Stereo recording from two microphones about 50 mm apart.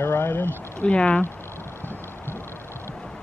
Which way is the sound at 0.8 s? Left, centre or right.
Left.